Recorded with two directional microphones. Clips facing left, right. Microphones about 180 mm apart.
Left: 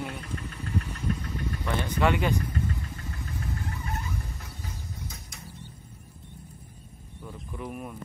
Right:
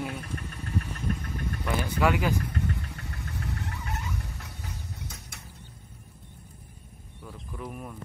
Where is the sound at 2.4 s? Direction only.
75° right (ahead or behind).